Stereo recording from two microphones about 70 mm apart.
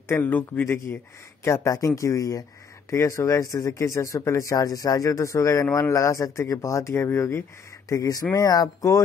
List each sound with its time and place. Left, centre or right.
0.1 s speech: left
1.4 s speech: left
7.9 s speech: left